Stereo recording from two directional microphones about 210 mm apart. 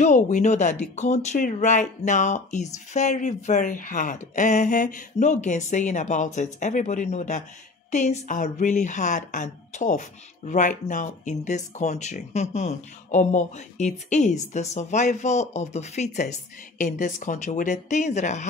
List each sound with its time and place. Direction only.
0.0 s speech: 35° left (ahead or behind)